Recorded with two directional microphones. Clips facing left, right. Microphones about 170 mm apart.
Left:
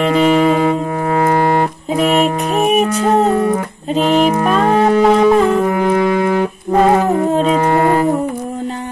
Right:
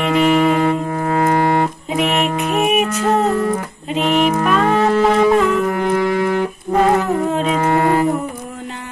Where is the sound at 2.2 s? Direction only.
35° left (ahead or behind).